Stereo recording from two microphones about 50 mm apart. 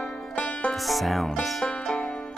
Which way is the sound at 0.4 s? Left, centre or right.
Left.